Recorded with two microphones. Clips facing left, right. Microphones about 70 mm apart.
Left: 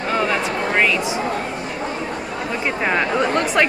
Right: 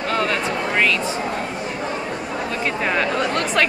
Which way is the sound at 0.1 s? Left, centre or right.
Centre.